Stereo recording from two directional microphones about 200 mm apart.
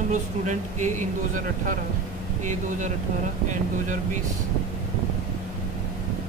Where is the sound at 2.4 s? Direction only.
35° right (ahead or behind).